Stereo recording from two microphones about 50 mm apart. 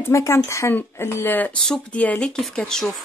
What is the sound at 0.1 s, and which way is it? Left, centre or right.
Speech, left.